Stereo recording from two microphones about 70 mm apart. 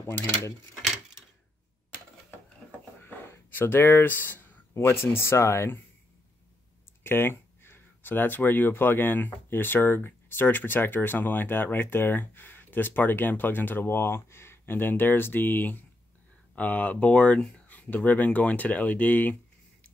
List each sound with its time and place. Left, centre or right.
0.0 s speech: left
3.0 s speech: left
7.0 s speech: left